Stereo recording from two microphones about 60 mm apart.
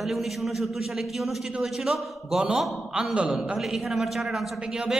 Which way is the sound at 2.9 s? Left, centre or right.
Centre.